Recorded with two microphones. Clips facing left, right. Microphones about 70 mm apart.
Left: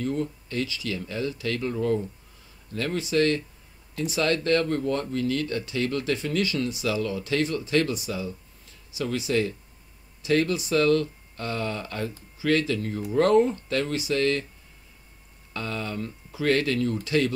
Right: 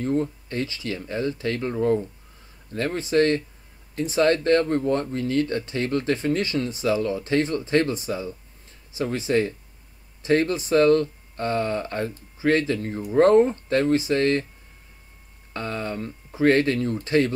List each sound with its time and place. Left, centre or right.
0.0 s speech: right
15.5 s speech: right